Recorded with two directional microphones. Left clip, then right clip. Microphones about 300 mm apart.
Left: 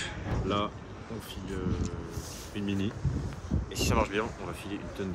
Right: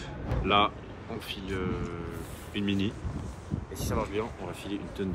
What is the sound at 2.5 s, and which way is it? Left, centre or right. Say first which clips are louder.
Speech: right 3 dB; centre.